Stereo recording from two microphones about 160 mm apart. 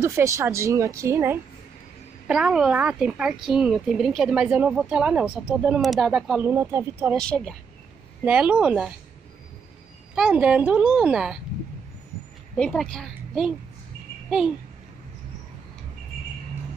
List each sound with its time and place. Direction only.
0.0 s a woman's voice: 15° right (ahead or behind)
2.2 s a woman's voice: 5° right (ahead or behind)
6.4 s a woman's voice: 15° right (ahead or behind)
7.2 s a woman's voice: 5° left (ahead or behind)
8.2 s a woman's voice: 10° right (ahead or behind)
10.1 s a woman's voice: 5° right (ahead or behind)
12.5 s a woman's voice: 5° left (ahead or behind)